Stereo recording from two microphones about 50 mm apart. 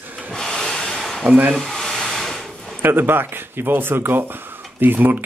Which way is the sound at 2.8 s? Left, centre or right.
Right.